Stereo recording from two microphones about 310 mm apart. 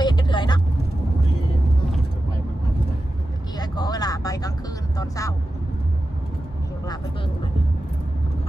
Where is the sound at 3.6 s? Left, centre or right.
Centre.